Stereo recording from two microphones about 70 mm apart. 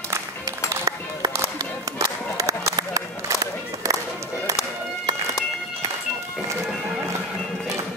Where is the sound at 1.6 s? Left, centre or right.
Right.